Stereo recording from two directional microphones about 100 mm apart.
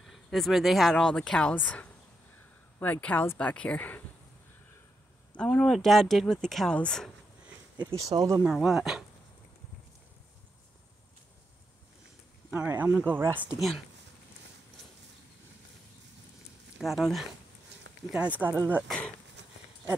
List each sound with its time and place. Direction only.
0.0 s speech: centre (ahead or behind)
5.3 s speech: 10° left (ahead or behind)
7.7 s speech: 40° right (ahead or behind)
8.5 s speech: 5° right (ahead or behind)
12.5 s speech: 15° right (ahead or behind)
16.7 s speech: centre (ahead or behind)
18.1 s speech: 15° right (ahead or behind)
18.9 s speech: 5° left (ahead or behind)